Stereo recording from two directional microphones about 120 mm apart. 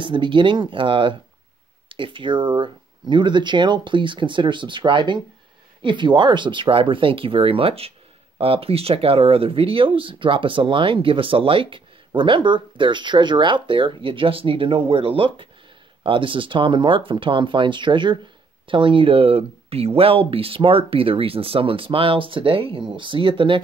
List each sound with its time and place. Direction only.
0.0 s speech: 45° right (ahead or behind)